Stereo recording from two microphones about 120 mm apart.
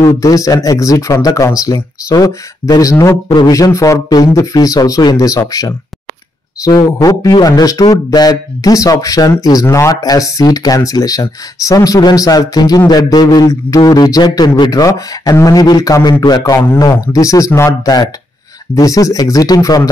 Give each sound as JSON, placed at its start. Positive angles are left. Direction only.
{"t": 0.0, "sound": "speech", "side_deg": 30}
{"t": 7.0, "sound": "speech", "side_deg": 30}
{"t": 18.8, "sound": "speech", "side_deg": 30}